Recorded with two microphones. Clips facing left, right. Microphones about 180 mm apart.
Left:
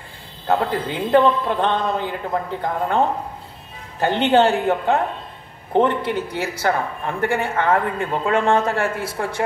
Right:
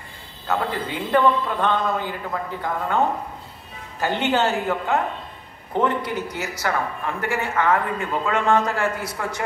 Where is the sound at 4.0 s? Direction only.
30° left (ahead or behind).